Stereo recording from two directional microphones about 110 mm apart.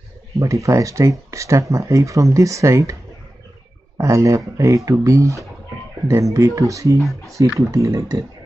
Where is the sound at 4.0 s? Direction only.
30° right (ahead or behind).